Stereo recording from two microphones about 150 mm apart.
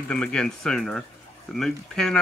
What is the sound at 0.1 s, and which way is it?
A man's voice, 5° left (ahead or behind).